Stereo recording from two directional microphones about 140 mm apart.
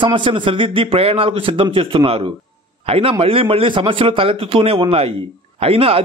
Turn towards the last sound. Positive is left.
turn(degrees=-45)  # may be behind; listen again after turning